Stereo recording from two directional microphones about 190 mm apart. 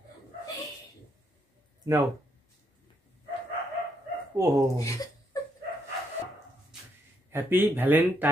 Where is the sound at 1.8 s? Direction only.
15° right (ahead or behind).